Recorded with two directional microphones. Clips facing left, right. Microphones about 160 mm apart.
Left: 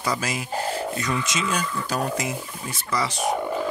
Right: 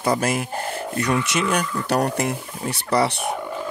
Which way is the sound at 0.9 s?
65° right (ahead or behind).